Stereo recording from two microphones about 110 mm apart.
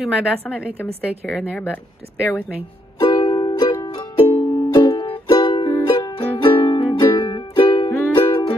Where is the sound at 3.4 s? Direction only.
50° left (ahead or behind).